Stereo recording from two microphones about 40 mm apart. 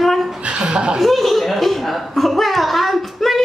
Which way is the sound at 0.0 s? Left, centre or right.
Centre.